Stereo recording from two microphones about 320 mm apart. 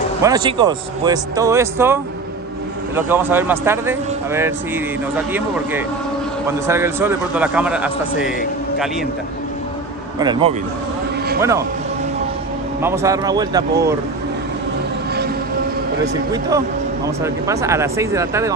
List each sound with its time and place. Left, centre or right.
0.2 s speech: centre
3.0 s a man's voice: centre
10.1 s speech: centre
12.8 s speech: centre
17.2 s speech: centre